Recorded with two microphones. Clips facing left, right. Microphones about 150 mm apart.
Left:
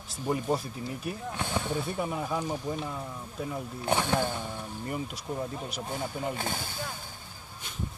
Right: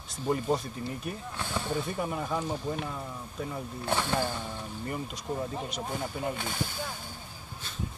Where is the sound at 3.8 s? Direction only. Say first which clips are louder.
Left 2 dB; 15° left (ahead or behind).